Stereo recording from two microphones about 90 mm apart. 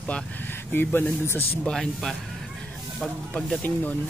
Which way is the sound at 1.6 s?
5° left (ahead or behind).